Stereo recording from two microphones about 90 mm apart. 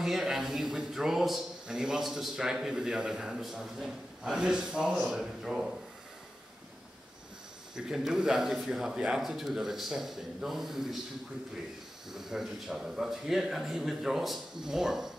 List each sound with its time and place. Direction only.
0.0 s a man's voice: 5° right (ahead or behind)
7.7 s a man's voice: 5° right (ahead or behind)
12.1 s a man's voice: 5° right (ahead or behind)